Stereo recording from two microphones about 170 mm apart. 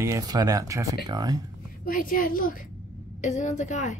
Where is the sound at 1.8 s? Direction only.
55° left (ahead or behind).